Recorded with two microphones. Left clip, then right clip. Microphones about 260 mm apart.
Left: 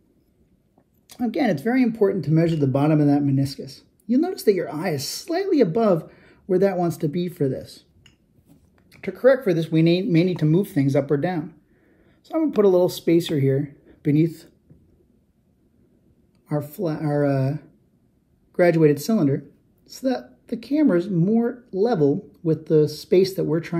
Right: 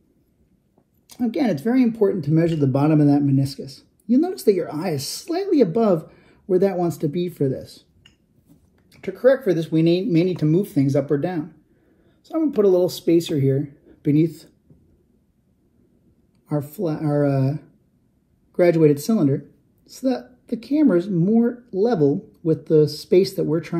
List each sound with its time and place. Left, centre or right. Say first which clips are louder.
1.0 s speech: even; left
6.1 s a sound: left 1 dB; left
6.5 s speech: right 1 dB; left
9.5 s speech: right 1 dB; left
16.4 s speech: right 1 dB; left